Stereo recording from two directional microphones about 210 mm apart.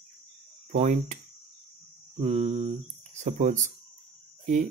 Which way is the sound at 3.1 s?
35° right (ahead or behind).